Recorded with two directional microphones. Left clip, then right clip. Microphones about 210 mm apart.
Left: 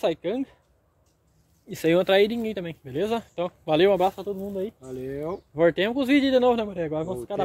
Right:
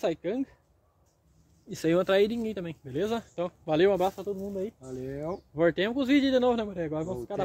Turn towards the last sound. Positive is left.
turn(degrees=25)  # may be behind; listen again after turning